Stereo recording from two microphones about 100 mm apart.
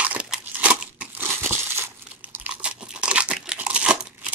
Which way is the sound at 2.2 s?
15° right (ahead or behind).